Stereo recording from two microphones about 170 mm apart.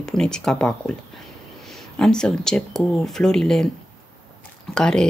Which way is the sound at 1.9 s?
5° left (ahead or behind).